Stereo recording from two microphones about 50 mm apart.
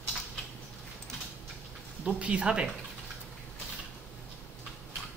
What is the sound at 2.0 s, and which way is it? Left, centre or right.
Speech, right.